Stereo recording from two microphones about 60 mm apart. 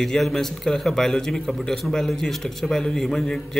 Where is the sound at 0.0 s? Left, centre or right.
Centre.